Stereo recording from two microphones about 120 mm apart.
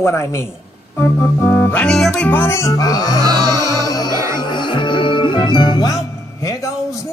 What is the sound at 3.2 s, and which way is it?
Music, 35° right (ahead or behind).